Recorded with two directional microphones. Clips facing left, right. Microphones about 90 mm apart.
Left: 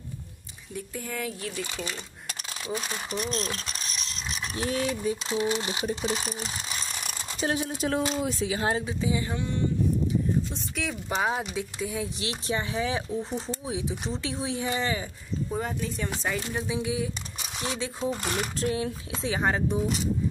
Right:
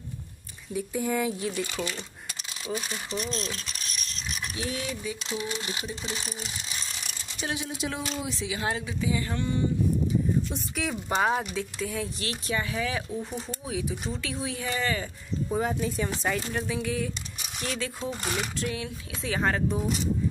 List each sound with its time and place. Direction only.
0.7 s speech: 15° right (ahead or behind)
3.1 s speech: 50° left (ahead or behind); by 5.9 s 30° left (ahead or behind)
6.0 s ratchet: 35° left (ahead or behind)
8.2 s speech: 45° left (ahead or behind); by 9.4 s 20° left (ahead or behind)
10.7 s speech: 5° right (ahead or behind)
11.5 s speech: 15° left (ahead or behind)
15.5 s speech: 5° right (ahead or behind)
16.5 s speech: 20° left (ahead or behind)
18.1 s speech: 5° left (ahead or behind)
18.6 s speech: 30° left (ahead or behind)
19.2 s speech: 15° left (ahead or behind)